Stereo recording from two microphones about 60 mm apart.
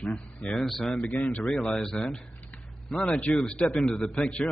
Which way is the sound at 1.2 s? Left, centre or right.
Left.